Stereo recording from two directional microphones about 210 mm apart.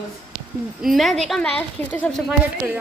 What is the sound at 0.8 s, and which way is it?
A woman's voice, centre (ahead or behind).